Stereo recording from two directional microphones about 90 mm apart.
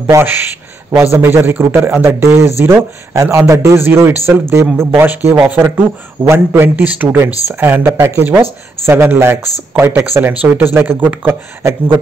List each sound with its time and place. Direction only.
0.0 s a man's voice: 25° right (ahead or behind)
5.3 s speech: 15° right (ahead or behind)
5.6 s a man's voice: 25° right (ahead or behind)